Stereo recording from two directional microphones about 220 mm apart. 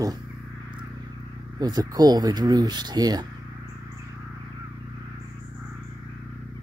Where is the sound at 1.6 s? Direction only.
15° right (ahead or behind).